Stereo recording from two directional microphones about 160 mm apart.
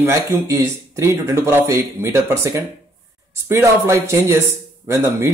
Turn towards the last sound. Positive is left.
turn(degrees=-20)  # may be behind; listen again after turning